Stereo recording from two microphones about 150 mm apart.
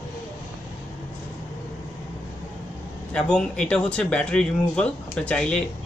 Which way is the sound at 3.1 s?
5° left (ahead or behind).